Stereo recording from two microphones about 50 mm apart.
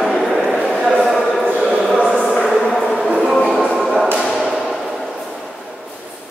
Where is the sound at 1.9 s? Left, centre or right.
Centre.